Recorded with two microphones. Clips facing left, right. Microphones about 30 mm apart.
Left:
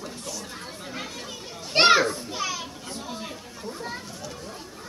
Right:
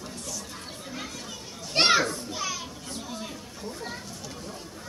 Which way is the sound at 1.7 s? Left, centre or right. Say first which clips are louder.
Left 4 dB; centre.